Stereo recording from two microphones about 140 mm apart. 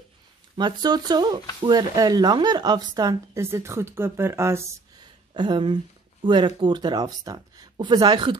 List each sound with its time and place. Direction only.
0.6 s speech: 30° right (ahead or behind)
5.3 s speech: 30° right (ahead or behind)